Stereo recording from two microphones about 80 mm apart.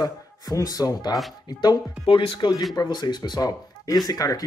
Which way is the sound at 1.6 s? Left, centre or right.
Left.